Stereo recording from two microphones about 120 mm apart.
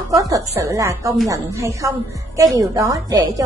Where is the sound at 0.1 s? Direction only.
30° right (ahead or behind).